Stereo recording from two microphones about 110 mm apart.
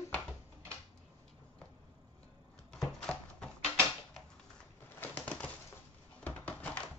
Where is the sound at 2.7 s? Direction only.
5° left (ahead or behind).